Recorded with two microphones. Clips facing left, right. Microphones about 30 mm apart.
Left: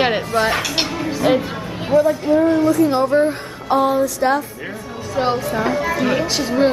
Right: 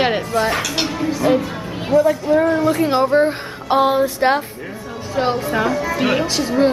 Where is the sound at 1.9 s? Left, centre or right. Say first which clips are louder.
Even; left.